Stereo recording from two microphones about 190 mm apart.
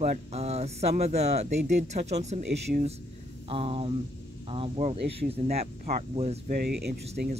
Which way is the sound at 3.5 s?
30° right (ahead or behind).